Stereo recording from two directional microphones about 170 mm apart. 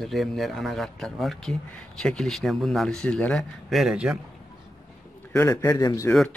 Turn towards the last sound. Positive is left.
turn(degrees=5)  # may be behind; listen again after turning